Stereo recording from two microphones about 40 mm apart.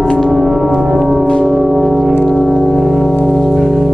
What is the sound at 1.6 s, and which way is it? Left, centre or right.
Music, centre.